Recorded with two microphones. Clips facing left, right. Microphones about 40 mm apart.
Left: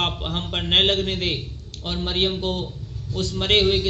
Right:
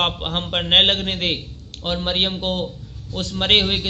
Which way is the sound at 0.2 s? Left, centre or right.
Right.